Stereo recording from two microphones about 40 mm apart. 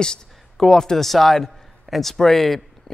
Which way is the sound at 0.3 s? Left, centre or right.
Centre.